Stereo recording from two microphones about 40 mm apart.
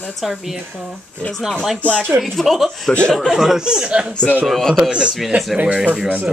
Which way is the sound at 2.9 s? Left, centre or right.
Left.